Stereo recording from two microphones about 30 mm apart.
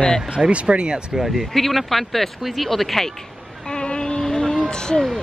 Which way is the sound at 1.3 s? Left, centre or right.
Centre.